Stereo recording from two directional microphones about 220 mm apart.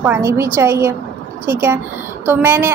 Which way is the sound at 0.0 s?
10° right (ahead or behind).